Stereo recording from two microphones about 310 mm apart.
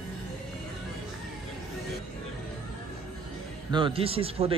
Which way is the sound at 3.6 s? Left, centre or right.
Centre.